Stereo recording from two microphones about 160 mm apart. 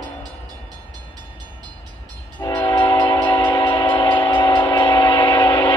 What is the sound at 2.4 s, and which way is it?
Train, 25° left (ahead or behind).